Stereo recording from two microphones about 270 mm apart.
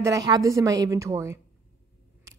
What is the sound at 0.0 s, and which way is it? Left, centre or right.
A woman's voice, centre.